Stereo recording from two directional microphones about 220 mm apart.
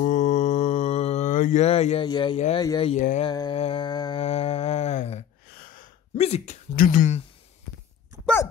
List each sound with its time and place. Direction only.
0.0 s mantra: 35° left (ahead or behind)
2.6 s speech: 15° left (ahead or behind)
2.9 s speech: 30° left (ahead or behind)
3.3 s mantra: 20° left (ahead or behind)
5.6 s speech: 40° left (ahead or behind)